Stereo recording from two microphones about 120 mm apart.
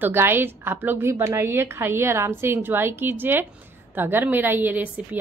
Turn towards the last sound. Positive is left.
turn(degrees=-15)  # may be behind; listen again after turning